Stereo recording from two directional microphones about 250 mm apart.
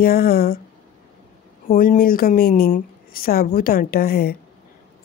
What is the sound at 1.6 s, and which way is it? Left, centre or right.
A woman's voice, left.